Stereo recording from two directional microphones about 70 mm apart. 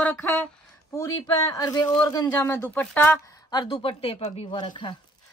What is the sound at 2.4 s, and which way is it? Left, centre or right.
Speech, left.